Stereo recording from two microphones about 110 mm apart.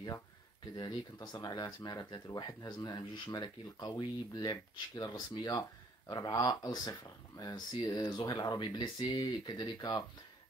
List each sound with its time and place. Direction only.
0.7 s speech: 40° left (ahead or behind)